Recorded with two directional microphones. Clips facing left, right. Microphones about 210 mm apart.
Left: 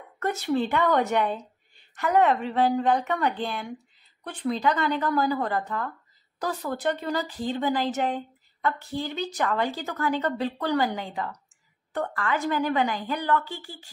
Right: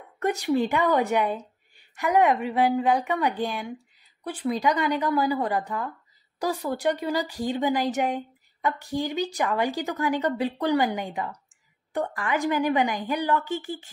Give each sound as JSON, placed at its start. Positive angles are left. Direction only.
{"t": 0.2, "sound": "a woman's voice", "side_deg": -15}